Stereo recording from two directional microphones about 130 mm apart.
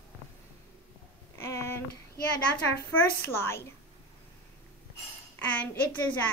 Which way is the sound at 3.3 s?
20° left (ahead or behind).